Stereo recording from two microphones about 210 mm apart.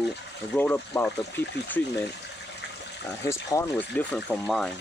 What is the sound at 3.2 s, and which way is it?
Speech, 15° left (ahead or behind).